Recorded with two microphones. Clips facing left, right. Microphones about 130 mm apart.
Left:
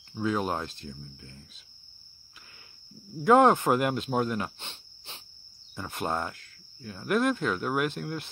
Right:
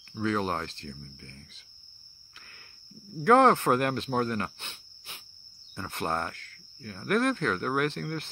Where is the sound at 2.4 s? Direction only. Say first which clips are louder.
Right 1 dB; 15° left (ahead or behind).